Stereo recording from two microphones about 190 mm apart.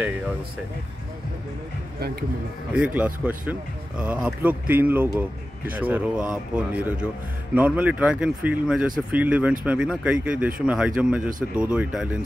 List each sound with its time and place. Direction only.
2.0 s speech: 55° right (ahead or behind)
2.7 s speech: 10° right (ahead or behind)